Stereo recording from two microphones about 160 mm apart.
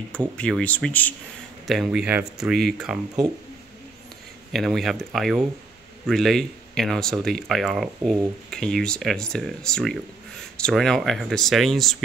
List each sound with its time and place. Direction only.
0.4 s speech: 5° left (ahead or behind)
1.7 s speech: 5° right (ahead or behind)
4.5 s speech: centre (ahead or behind)